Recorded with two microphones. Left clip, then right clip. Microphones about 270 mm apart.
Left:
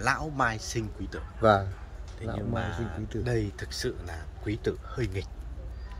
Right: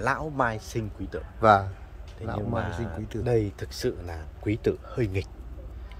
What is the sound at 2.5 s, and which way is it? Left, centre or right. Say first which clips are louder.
A man's voice: right 2 dB; right.